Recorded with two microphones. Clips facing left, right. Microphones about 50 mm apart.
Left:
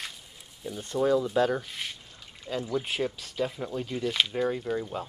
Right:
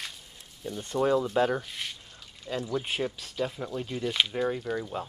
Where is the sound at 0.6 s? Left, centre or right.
Centre.